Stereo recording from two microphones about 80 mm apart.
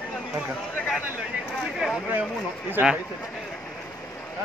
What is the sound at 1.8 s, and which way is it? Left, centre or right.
Speech, centre.